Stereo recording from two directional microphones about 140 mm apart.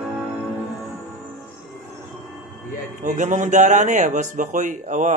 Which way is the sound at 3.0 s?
65° right (ahead or behind).